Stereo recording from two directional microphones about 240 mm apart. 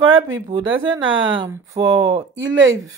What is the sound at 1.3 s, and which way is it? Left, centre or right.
Speech, centre.